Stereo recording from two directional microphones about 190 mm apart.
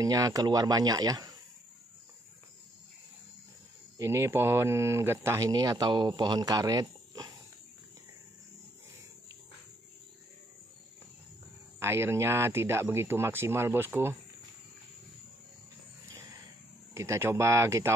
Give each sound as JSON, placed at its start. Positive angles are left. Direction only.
{"t": 0.0, "sound": "speech", "side_deg": -20}
{"t": 4.0, "sound": "speech", "side_deg": -15}
{"t": 11.8, "sound": "speech", "side_deg": -15}
{"t": 16.9, "sound": "speech", "side_deg": -15}